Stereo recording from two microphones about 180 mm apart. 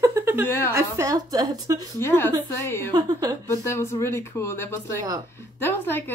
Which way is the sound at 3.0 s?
20° right (ahead or behind).